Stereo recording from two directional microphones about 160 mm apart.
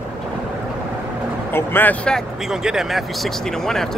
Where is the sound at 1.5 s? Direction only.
15° left (ahead or behind).